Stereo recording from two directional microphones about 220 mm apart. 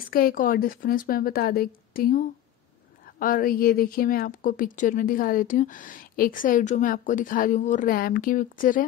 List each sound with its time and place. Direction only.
0.1 s a woman's voice: 40° left (ahead or behind)